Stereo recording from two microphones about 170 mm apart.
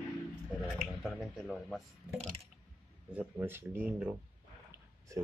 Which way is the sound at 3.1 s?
10° right (ahead or behind).